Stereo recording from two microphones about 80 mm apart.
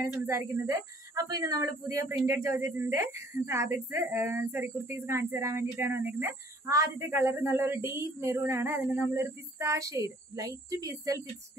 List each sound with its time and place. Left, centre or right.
0.3 s speech: right
0.7 s speech: right
6.7 s speech: right